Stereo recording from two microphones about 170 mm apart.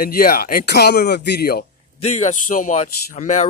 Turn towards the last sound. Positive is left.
turn(degrees=45)  # may be behind; listen again after turning